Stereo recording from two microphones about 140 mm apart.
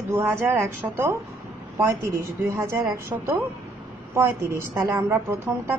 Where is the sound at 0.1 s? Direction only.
15° right (ahead or behind).